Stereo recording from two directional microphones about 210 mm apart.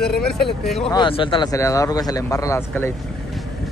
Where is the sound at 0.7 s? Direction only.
Centre (ahead or behind).